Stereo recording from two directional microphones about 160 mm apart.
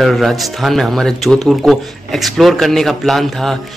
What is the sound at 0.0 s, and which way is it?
Speech, centre (ahead or behind).